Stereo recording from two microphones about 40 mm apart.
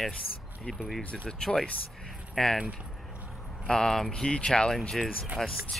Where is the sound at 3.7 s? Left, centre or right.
Centre.